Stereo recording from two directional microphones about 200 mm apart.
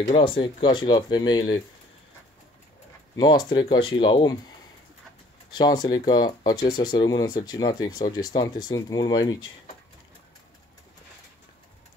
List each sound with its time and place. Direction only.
0.0 s speech: 25° left (ahead or behind)
3.2 s speech: 20° left (ahead or behind)